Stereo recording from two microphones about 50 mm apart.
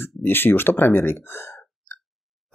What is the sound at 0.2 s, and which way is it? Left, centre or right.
Speech, left.